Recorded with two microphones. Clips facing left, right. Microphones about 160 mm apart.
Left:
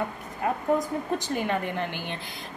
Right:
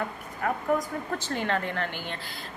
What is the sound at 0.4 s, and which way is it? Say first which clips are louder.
Speech: left 2 dB; 20° left (ahead or behind).